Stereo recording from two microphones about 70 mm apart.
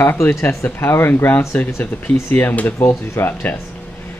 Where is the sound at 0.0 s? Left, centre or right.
Left.